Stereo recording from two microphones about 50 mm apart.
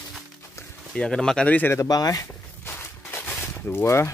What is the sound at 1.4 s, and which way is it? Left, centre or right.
Speech, left.